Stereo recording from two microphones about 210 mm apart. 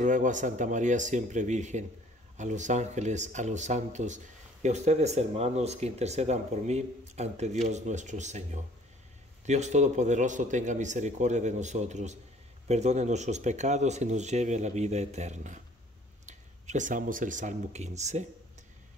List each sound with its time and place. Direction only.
0.0 s speech: 35° right (ahead or behind)